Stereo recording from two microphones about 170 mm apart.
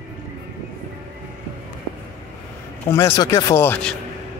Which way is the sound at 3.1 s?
20° left (ahead or behind).